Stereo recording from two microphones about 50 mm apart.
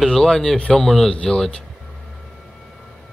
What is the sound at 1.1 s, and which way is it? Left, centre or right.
Speech, centre.